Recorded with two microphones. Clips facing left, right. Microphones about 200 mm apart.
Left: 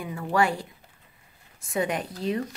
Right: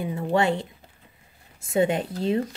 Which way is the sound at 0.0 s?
25° right (ahead or behind).